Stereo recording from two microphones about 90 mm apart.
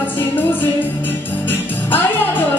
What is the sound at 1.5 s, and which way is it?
Music, 20° left (ahead or behind).